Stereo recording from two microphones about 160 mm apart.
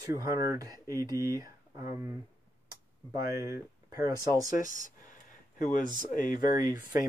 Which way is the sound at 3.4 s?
20° right (ahead or behind).